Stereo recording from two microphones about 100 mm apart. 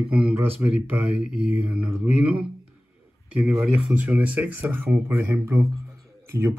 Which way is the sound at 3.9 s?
20° right (ahead or behind).